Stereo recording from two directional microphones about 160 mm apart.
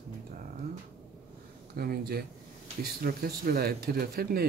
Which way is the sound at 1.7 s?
65° right (ahead or behind).